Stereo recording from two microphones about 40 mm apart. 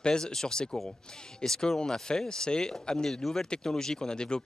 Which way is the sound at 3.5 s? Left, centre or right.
Centre.